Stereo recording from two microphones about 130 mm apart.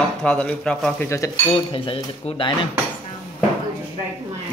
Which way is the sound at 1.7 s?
40° left (ahead or behind).